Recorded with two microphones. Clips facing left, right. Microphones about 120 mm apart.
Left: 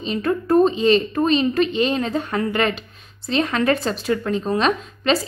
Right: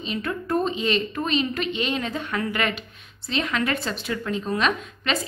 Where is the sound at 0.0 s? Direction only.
40° left (ahead or behind).